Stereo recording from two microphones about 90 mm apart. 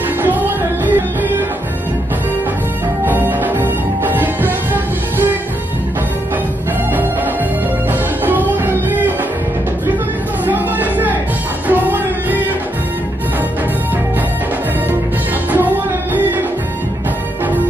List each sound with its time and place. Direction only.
0.2 s music: 20° right (ahead or behind)
3.1 s music: 20° right (ahead or behind)
8.3 s music: 20° right (ahead or behind)
10.4 s a sound: 20° right (ahead or behind)
11.6 s music: 20° right (ahead or behind)
15.5 s music: 20° right (ahead or behind)